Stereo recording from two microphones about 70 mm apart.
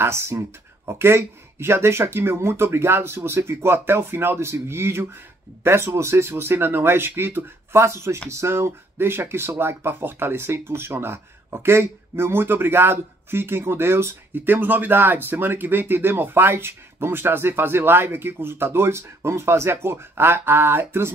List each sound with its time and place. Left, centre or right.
0.0 s speech: right